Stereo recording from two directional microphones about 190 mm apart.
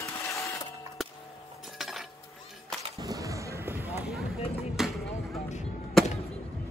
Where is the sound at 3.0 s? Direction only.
20° right (ahead or behind).